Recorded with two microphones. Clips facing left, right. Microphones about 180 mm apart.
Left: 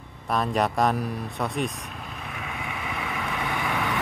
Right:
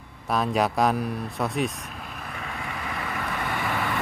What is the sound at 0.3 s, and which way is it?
Speech, centre (ahead or behind).